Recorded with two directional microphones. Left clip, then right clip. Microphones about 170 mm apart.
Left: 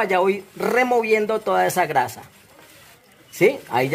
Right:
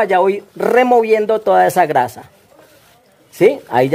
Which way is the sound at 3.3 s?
65° right (ahead or behind).